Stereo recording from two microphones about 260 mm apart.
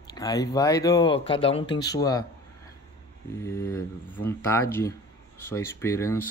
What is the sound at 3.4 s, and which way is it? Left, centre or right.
Speech, centre.